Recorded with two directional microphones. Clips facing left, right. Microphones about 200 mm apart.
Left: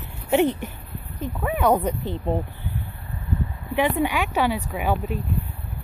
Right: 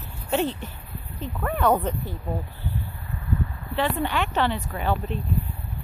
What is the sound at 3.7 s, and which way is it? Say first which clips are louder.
Speech: left 3 dB; 10° left (ahead or behind).